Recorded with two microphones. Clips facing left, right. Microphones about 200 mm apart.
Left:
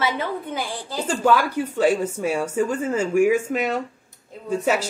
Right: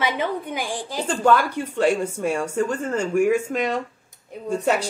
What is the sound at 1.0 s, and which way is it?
Speech, 5° left (ahead or behind).